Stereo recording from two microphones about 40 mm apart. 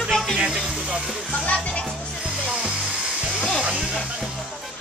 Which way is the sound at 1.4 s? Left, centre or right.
Left.